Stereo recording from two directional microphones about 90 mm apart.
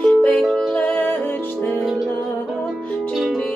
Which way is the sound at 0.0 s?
15° left (ahead or behind).